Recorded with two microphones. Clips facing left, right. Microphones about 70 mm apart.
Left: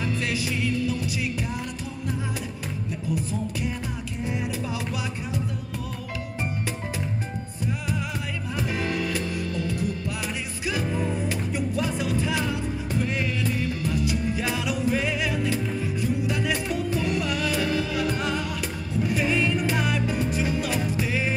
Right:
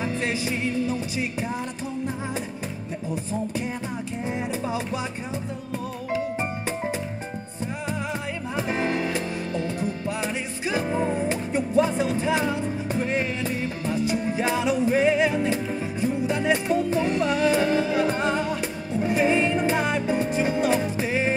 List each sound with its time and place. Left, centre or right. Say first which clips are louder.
0.0 s music: right 1 dB; right
8.5 s music: right 3 dB; right